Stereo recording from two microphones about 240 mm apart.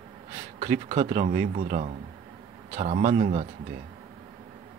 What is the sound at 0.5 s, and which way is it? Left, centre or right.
A man's voice, right.